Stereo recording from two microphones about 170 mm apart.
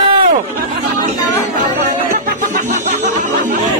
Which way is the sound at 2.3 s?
50° right (ahead or behind).